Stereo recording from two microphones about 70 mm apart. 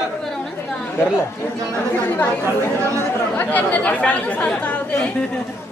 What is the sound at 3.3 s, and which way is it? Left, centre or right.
Speech, left.